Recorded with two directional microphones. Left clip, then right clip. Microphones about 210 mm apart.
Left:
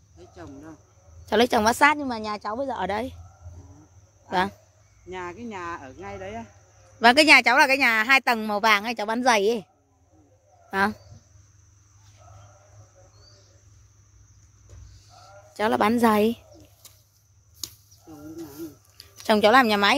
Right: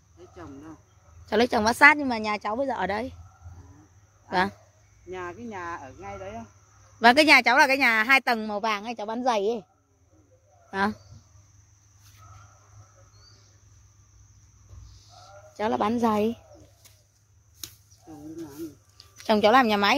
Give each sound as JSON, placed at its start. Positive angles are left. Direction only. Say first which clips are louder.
{"t": 1.2, "sound": "a woman's voice", "louder": "left 3 dB", "side_deg": 10}
{"t": 1.8, "sound": "a woman's voice", "louder": "right 3 dB", "side_deg": -5}
{"t": 2.9, "sound": "a woman's voice", "louder": "left 2 dB", "side_deg": 10}
{"t": 4.3, "sound": "speech", "louder": "left 1 dB", "side_deg": 5}
{"t": 5.1, "sound": "speech", "louder": "left 1 dB", "side_deg": 45}
{"t": 7.0, "sound": "a woman's voice", "louder": "left 2 dB", "side_deg": 5}
{"t": 8.4, "sound": "a woman's voice", "louder": "left 7 dB", "side_deg": 20}
{"t": 10.7, "sound": "speech", "louder": "left 3 dB", "side_deg": 5}
{"t": 15.0, "sound": "sheep", "louder": "even", "side_deg": -35}
{"t": 15.5, "sound": "a woman's voice", "louder": "left 4 dB", "side_deg": 15}
{"t": 19.1, "sound": "a woman's voice", "louder": "left 2 dB", "side_deg": 5}